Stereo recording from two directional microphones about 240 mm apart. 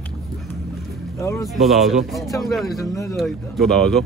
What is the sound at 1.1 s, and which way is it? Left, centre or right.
Speech, centre.